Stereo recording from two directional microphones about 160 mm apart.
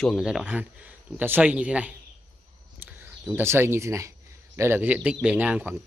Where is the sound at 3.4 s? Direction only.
15° right (ahead or behind).